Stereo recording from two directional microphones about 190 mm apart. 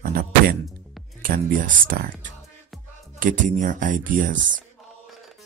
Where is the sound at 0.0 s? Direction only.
50° right (ahead or behind).